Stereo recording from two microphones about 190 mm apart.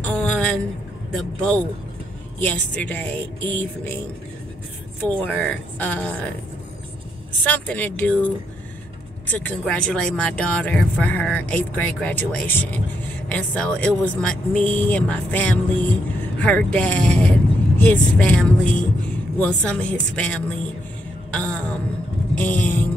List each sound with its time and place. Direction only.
0.0 s a sound: 5° left (ahead or behind)
1.1 s speech: 5° left (ahead or behind)
5.0 s speech: 10° left (ahead or behind)
7.4 s speech: 10° left (ahead or behind)
9.3 s speech: 10° left (ahead or behind)
21.3 s a sound: 5° left (ahead or behind)
22.4 s speech: 10° left (ahead or behind)